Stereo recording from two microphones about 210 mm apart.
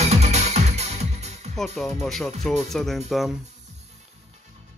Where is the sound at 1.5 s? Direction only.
Centre (ahead or behind).